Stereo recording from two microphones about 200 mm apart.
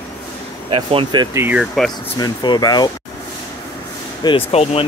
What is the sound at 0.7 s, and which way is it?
Speech, 25° right (ahead or behind).